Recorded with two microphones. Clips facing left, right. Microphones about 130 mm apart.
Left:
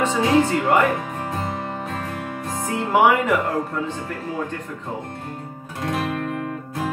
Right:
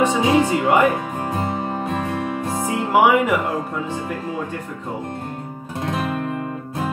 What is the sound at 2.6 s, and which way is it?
Speech, 10° right (ahead or behind).